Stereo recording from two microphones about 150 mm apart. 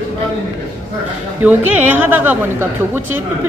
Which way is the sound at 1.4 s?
10° right (ahead or behind).